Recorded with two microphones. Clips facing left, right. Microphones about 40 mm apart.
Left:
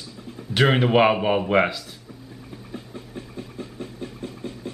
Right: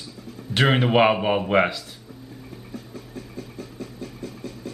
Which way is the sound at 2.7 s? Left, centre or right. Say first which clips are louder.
Left 1 dB; left.